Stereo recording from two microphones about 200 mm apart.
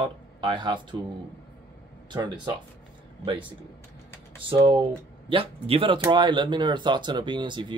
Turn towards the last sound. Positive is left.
turn(degrees=-25)  # may be behind; listen again after turning